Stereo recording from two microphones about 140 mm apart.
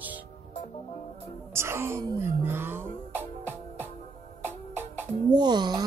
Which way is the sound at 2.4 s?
15° right (ahead or behind).